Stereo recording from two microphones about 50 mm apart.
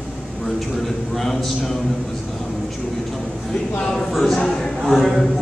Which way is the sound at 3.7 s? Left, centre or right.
Left.